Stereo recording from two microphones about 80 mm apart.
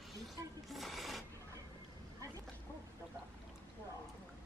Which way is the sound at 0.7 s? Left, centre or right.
Centre.